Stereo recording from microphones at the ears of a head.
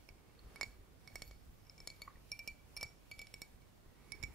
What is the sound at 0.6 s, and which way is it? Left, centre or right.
Chink, right.